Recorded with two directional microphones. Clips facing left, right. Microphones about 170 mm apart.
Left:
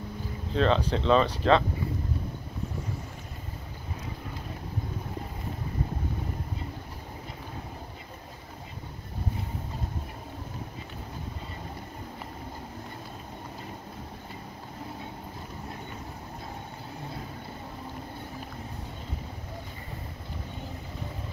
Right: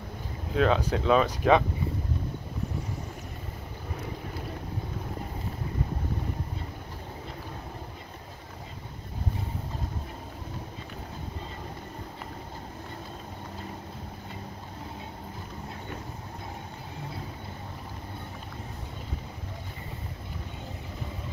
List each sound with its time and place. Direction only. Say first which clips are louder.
0.6 s speech: even; 10° right (ahead or behind)